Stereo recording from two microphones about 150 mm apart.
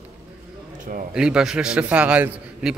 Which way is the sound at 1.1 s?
5° right (ahead or behind).